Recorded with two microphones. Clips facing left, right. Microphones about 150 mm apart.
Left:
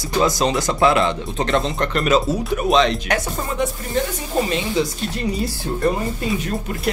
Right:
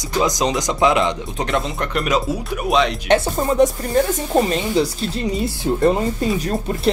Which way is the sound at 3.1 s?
40° right (ahead or behind).